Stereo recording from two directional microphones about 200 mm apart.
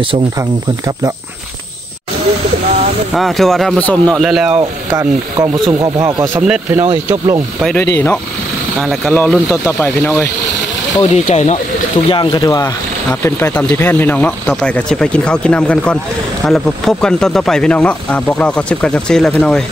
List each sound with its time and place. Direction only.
0.0 s speech: 20° right (ahead or behind)
3.2 s speech: centre (ahead or behind)
4.6 s rub: 20° right (ahead or behind)
5.8 s speech: 20° right (ahead or behind)
6.3 s rub: 5° right (ahead or behind)
7.6 s speech: 10° left (ahead or behind)
11.0 s speech: 35° left (ahead or behind)
12.1 s speech: 20° left (ahead or behind); by 19.6 s 5° left (ahead or behind)